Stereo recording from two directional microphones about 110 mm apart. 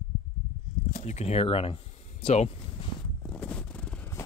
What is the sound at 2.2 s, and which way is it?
Speech, 75° left (ahead or behind).